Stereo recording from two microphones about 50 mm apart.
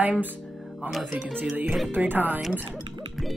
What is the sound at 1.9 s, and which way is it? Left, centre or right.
Speech, right.